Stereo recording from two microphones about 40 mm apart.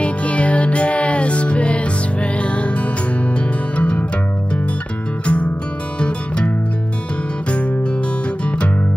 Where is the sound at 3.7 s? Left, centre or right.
Left.